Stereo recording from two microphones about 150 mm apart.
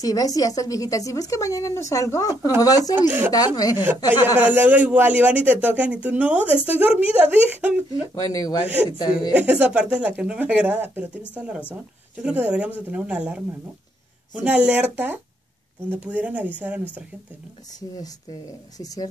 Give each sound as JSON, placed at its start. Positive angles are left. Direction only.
{"t": 0.0, "sound": "a woman's voice", "side_deg": 25}
{"t": 3.0, "sound": "a man's voice", "side_deg": -10}
{"t": 3.3, "sound": "a woman's voice", "side_deg": 25}
{"t": 3.7, "sound": "a man's voice", "side_deg": -10}
{"t": 8.1, "sound": "a woman's voice", "side_deg": 25}
{"t": 9.3, "sound": "a man's voice", "side_deg": -10}
{"t": 17.7, "sound": "a woman's voice", "side_deg": 25}